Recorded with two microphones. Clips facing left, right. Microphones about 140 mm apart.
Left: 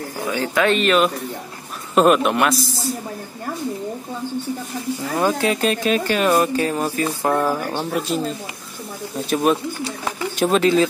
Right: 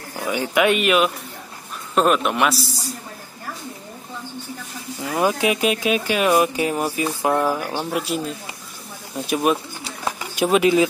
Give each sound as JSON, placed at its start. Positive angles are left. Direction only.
{"t": 0.3, "sound": "speech", "side_deg": -15}
{"t": 2.0, "sound": "a man's voice", "side_deg": 0}
{"t": 5.1, "sound": "speech", "side_deg": -15}
{"t": 9.3, "sound": "a man's voice", "side_deg": -5}
{"t": 10.0, "sound": "pigeon", "side_deg": -10}